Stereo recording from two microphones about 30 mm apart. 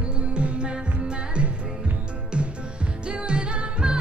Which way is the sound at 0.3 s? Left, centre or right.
Right.